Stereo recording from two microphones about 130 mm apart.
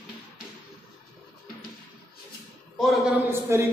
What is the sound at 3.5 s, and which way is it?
Speech, 20° right (ahead or behind).